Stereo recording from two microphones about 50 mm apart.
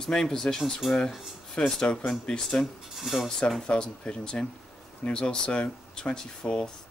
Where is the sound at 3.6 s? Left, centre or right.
Centre.